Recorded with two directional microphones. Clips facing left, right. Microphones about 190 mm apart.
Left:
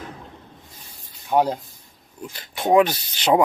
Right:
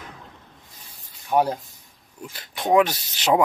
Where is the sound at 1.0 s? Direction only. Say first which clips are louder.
Left 1 dB; 15° left (ahead or behind).